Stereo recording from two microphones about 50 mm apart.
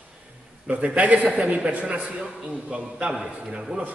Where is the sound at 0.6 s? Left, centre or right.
Right.